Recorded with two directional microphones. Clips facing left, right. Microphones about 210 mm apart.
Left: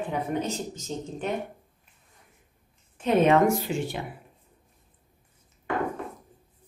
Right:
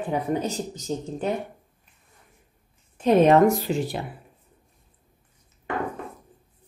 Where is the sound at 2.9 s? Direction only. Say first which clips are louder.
Right 4 dB; 40° right (ahead or behind).